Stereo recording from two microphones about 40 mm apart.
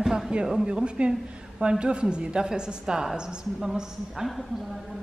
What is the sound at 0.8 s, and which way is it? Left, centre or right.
A woman's voice, right.